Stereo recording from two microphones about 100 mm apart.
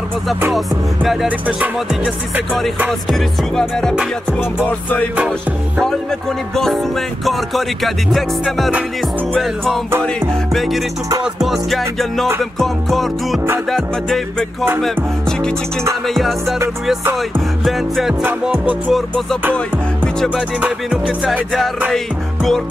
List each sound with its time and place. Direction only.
0.5 s music: centre (ahead or behind)
2.9 s music: 5° left (ahead or behind)
3.9 s music: 10° right (ahead or behind)
4.6 s music: 15° left (ahead or behind)
6.5 s music: 5° left (ahead or behind)
10.5 s music: centre (ahead or behind)
17.6 s music: centre (ahead or behind)
20.3 s music: 10° right (ahead or behind)
21.2 s music: centre (ahead or behind)